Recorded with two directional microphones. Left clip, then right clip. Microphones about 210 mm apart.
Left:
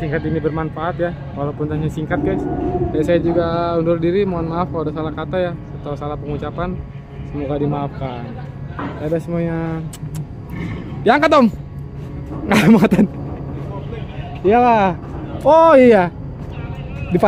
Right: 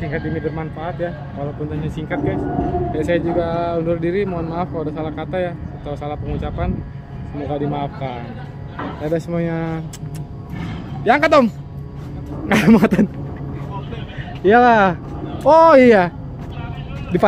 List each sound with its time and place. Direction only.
0.0 s a man's voice: 20° left (ahead or behind); by 10.2 s centre (ahead or behind)
11.1 s speech: 15° left (ahead or behind)
14.4 s speech: 5° right (ahead or behind)